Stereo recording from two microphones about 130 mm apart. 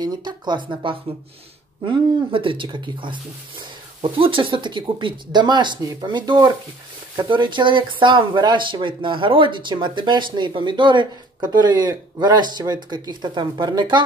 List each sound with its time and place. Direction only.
0.0 s speech: 35° right (ahead or behind)